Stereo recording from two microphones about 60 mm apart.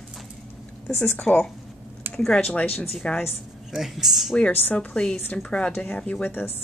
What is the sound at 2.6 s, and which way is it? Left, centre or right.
Speech, left.